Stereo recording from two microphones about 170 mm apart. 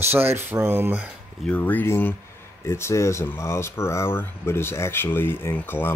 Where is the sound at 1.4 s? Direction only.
10° left (ahead or behind).